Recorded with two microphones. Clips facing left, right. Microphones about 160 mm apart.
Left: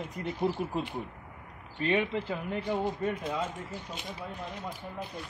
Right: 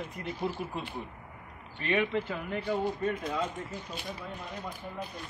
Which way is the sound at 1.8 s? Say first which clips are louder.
Even; 30° left (ahead or behind).